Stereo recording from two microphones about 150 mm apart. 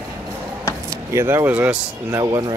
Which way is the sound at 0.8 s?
15° right (ahead or behind).